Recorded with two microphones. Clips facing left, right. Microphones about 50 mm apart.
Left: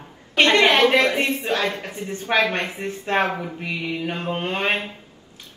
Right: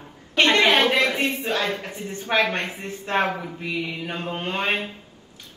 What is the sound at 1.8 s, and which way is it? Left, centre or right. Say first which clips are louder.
Speech: left 2 dB; left.